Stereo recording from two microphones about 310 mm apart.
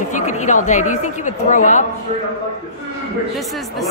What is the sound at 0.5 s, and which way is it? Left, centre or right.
A woman's voice, left.